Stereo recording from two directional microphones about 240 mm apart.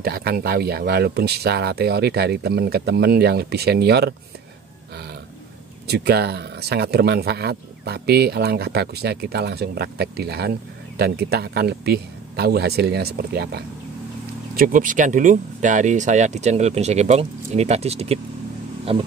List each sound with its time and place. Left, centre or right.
0.0 s speech: right
5.9 s speech: right